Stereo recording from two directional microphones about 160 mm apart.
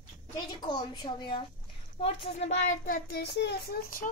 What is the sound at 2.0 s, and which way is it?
A child's voice, 40° left (ahead or behind).